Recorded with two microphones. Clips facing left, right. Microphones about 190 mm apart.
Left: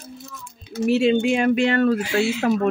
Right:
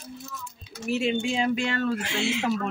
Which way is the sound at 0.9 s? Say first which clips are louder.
Left 8 dB; 70° left (ahead or behind).